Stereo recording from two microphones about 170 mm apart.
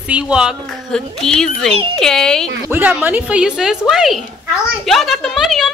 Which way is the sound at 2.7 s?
10° right (ahead or behind).